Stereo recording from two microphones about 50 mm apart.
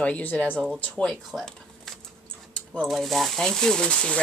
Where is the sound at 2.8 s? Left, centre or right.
Centre.